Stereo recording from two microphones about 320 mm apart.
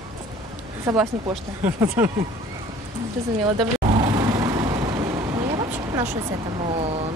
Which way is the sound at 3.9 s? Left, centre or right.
Centre.